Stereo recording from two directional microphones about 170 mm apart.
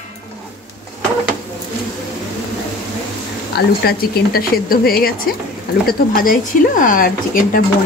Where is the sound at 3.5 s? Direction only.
65° left (ahead or behind).